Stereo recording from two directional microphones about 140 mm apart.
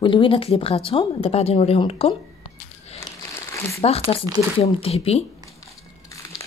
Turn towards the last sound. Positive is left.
turn(degrees=45)  # may be behind; listen again after turning